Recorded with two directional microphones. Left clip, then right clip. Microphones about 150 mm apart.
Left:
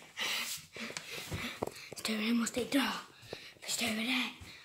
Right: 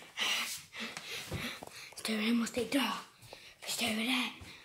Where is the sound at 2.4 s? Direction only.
5° left (ahead or behind).